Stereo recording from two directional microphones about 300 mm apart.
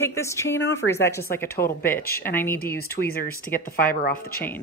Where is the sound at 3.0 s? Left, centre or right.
Left.